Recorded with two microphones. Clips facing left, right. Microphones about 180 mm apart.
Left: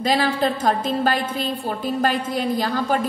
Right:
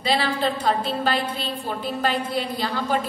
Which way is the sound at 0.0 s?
45° left (ahead or behind).